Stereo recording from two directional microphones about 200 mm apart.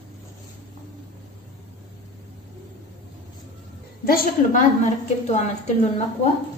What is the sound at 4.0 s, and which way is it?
A woman's voice, 45° left (ahead or behind).